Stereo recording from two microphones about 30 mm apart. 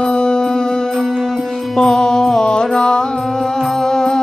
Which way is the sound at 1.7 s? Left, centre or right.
Left.